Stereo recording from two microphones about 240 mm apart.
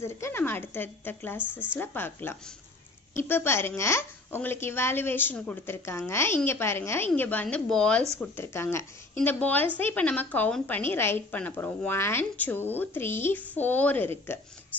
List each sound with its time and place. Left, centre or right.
0.0 s a woman's voice: centre
1.4 s speech: centre
1.8 s a woman's voice: centre